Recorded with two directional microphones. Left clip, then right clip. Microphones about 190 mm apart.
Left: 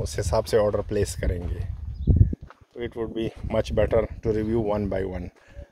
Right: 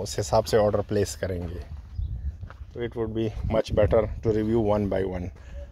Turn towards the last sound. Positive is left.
turn(degrees=-10)  # may be behind; listen again after turning